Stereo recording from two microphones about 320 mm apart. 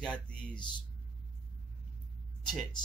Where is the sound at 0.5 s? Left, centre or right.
Centre.